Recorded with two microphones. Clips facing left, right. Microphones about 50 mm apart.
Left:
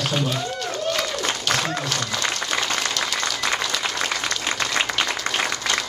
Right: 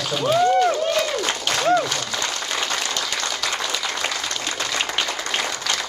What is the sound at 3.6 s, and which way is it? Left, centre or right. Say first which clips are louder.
Applause: even; centre.